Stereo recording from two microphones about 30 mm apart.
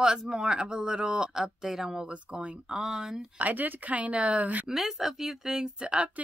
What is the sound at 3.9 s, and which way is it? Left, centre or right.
Speech, right.